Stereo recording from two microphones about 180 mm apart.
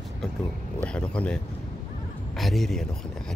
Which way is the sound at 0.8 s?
5° left (ahead or behind).